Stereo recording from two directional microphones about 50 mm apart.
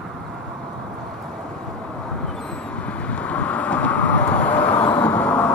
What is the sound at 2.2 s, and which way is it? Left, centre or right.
Vehicle, centre.